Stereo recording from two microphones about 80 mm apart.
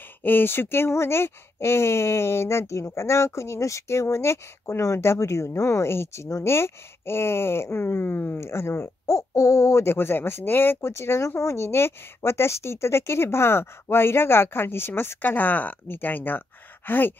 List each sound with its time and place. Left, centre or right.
0.2 s speech: left